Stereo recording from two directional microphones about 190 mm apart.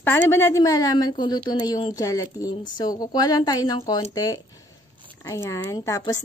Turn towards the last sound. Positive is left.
turn(degrees=15)  # may be behind; listen again after turning